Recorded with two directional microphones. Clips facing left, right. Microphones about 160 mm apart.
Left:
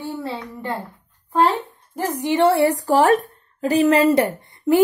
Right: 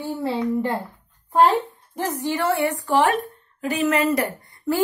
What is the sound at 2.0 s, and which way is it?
Speech, 15° left (ahead or behind).